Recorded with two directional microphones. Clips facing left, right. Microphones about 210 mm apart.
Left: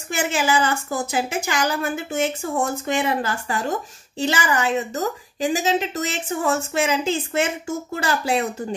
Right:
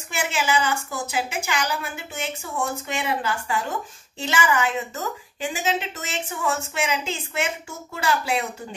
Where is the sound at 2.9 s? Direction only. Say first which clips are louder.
Left 4 dB; 40° left (ahead or behind).